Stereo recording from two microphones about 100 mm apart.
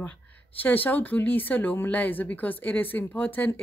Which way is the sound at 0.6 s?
15° left (ahead or behind).